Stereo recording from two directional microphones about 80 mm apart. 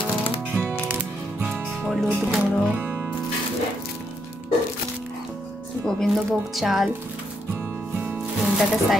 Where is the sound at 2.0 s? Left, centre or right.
Centre.